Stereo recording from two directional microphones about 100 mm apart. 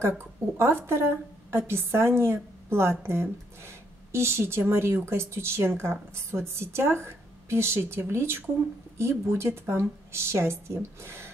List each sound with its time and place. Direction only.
0.2 s a woman's voice: 25° right (ahead or behind)